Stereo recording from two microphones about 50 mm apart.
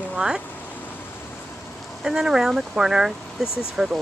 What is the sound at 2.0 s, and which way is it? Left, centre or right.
Speech, centre.